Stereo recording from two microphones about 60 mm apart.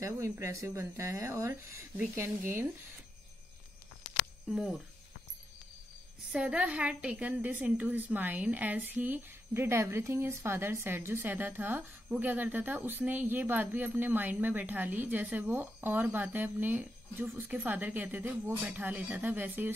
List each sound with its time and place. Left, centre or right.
0.0 s speech: right
4.5 s speech: centre
6.3 s speech: centre